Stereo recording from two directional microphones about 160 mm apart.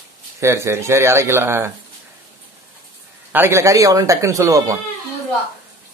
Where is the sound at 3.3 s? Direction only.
15° right (ahead or behind).